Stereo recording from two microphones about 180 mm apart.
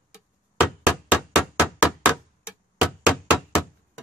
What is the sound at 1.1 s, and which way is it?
Hammer, 10° right (ahead or behind).